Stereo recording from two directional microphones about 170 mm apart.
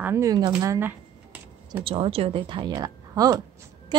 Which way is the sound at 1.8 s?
35° right (ahead or behind).